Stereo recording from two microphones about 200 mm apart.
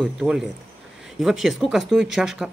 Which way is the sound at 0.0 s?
Centre (ahead or behind).